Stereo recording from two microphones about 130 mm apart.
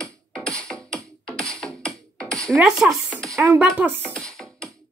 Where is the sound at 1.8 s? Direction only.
5° left (ahead or behind).